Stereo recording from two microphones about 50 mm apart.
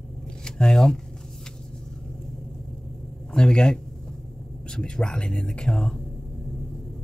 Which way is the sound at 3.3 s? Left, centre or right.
Centre.